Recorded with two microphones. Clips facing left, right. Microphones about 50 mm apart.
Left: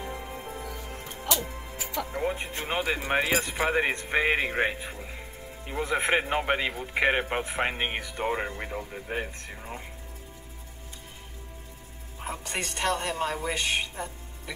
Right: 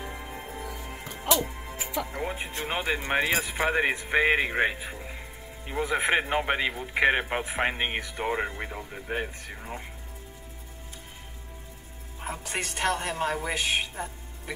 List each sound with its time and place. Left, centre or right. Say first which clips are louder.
0.0 s music: left 1 dB; centre
1.3 s speech: right 4 dB; centre
12.2 s speech: even; centre
13.2 s speech: right 1 dB; centre